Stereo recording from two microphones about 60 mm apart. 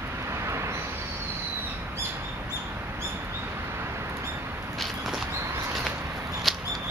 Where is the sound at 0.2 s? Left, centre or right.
Right.